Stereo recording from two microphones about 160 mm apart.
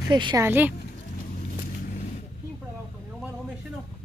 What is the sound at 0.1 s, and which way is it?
Speech, 30° right (ahead or behind).